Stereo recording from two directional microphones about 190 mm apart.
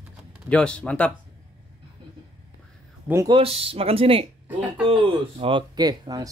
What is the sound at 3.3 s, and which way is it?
Speech, 30° right (ahead or behind).